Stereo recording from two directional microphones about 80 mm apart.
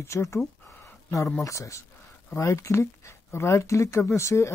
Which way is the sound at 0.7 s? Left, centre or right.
Left.